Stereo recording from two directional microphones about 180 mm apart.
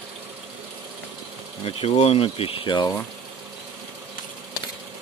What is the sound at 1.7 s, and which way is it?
Speech, 35° left (ahead or behind).